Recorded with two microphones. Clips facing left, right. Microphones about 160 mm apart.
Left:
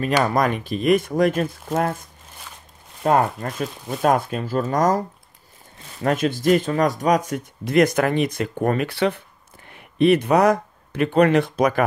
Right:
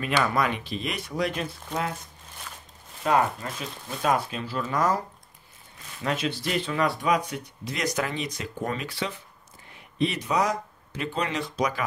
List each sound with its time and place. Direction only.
0.0 s speech: 40° left (ahead or behind)
3.0 s speech: 45° left (ahead or behind)
6.0 s speech: 50° left (ahead or behind)